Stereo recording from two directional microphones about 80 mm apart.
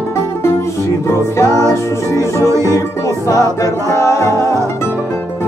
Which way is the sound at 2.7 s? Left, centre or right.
Left.